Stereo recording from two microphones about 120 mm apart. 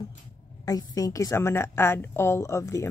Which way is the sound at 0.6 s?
30° left (ahead or behind).